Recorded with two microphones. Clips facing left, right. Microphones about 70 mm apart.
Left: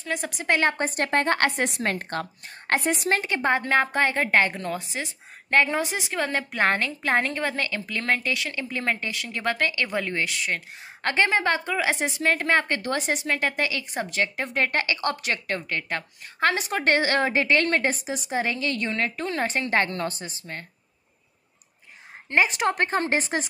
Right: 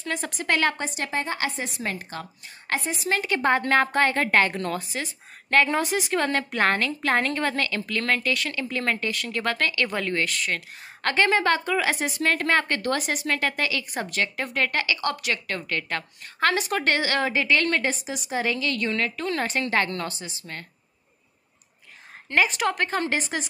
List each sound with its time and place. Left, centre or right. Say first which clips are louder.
0.0 s a woman's voice: even; centre
0.5 s a woman's voice: left 1 dB; left
0.7 s a woman's voice: left 5 dB; left
1.2 s a woman's voice: left 6 dB; left
3.1 s a woman's voice: right 1 dB; left
3.3 s a woman's voice: right 3 dB; centre
4.8 s speech: right 1 dB; left
5.7 s a woman's voice: right 3 dB; centre
6.6 s a woman's voice: even; centre
22.3 s a woman's voice: left 1 dB; left